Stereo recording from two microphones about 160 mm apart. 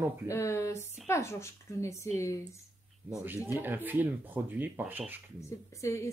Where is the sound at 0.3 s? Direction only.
20° left (ahead or behind).